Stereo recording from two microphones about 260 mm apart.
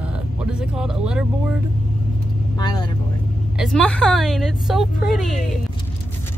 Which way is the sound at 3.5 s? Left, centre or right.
Centre.